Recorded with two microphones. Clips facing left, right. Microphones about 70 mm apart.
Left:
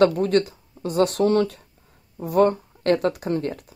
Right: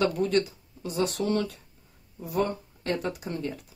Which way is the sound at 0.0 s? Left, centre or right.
Left.